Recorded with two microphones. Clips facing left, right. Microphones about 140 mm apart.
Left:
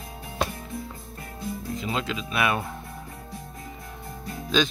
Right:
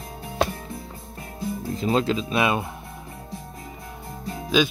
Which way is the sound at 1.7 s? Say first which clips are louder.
Right 9 dB; 35° right (ahead or behind).